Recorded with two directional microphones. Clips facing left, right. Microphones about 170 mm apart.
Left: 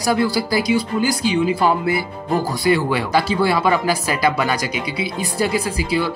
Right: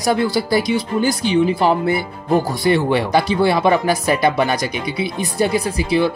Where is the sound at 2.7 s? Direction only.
20° right (ahead or behind).